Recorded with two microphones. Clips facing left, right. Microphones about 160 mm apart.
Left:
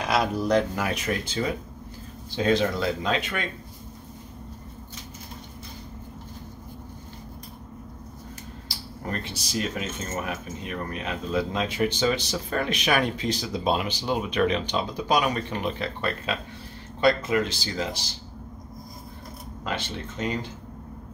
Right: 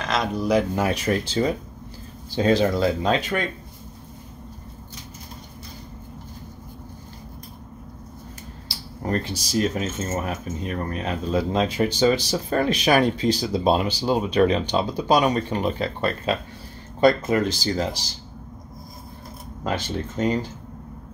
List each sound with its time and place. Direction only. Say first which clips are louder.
0.0 s speech: even; 5° left (ahead or behind)
0.7 s speech: right 5 dB; 30° right (ahead or behind)
9.0 s speech: right 7 dB; 40° right (ahead or behind)
19.6 s speech: right 5 dB; 40° right (ahead or behind)